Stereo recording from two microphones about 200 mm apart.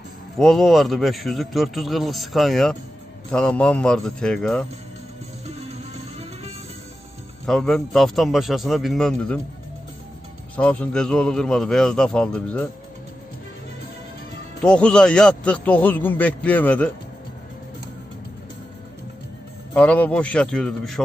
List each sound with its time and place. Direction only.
0.4 s a man's voice: centre (ahead or behind)
5.7 s music: 30° right (ahead or behind)
7.4 s a man's voice: centre (ahead or behind)
10.5 s a man's voice: 5° left (ahead or behind)
14.6 s a man's voice: 5° left (ahead or behind)
19.7 s a man's voice: 5° left (ahead or behind)